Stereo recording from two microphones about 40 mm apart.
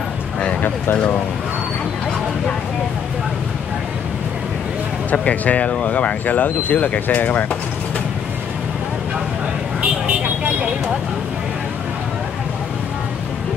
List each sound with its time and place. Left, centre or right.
0.4 s a sound: left
5.1 s speech: left
10.0 s vehicle: right